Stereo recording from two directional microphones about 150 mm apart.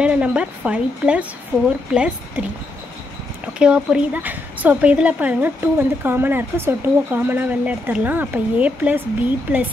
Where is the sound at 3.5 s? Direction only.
5° right (ahead or behind).